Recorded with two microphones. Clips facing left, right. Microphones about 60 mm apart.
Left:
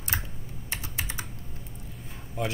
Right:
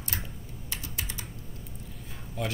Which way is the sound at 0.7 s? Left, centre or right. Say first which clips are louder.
Left 3 dB; left.